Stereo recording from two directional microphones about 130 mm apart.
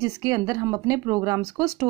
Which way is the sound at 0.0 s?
25° right (ahead or behind).